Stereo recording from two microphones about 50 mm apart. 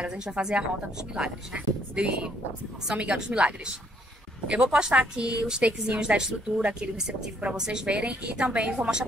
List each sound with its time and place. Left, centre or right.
0.0 s a woman's voice: centre